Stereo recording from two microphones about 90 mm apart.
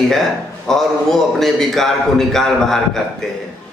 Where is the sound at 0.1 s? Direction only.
5° left (ahead or behind).